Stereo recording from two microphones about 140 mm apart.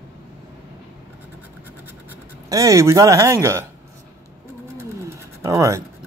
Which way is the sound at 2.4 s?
25° right (ahead or behind).